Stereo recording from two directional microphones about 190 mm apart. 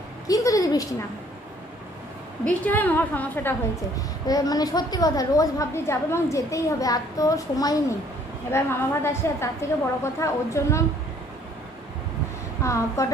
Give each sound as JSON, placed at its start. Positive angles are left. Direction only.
{"t": 0.3, "sound": "a sound", "side_deg": 15}
{"t": 2.4, "sound": "a woman's voice", "side_deg": 10}
{"t": 12.6, "sound": "a woman's voice", "side_deg": 15}